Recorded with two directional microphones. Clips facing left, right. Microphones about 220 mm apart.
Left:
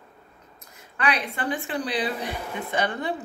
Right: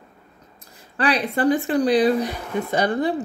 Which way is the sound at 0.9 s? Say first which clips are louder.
Right 6 dB; 35° right (ahead or behind).